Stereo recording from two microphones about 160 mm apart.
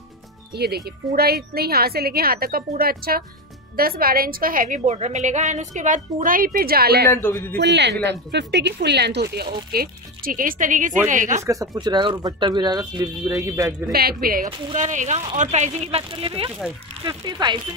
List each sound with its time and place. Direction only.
0.6 s a woman's voice: 80° right
7.1 s speech: 15° left (ahead or behind)
7.5 s speech: 90° right
9.7 s a woman's voice: 70° right (ahead or behind)
11.4 s speech: 20° right (ahead or behind)
13.9 s a woman's voice: 70° right (ahead or behind)
14.7 s speech: 50° right (ahead or behind); by 17.6 s 25° right (ahead or behind)